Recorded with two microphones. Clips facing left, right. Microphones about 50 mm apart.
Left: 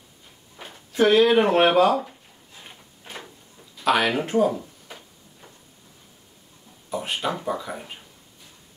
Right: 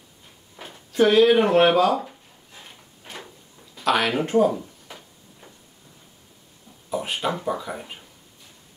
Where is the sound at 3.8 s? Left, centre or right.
Centre.